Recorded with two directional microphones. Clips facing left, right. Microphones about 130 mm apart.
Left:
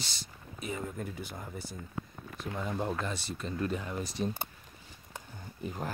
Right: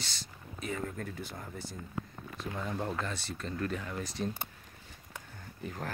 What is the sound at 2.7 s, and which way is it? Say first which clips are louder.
Speech: left 2 dB; 15° left (ahead or behind).